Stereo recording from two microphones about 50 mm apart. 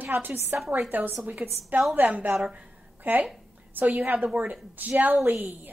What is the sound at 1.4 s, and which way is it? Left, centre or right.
Speech, right.